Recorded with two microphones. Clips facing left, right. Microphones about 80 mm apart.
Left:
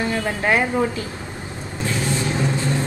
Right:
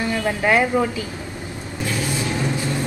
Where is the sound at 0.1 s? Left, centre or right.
Centre.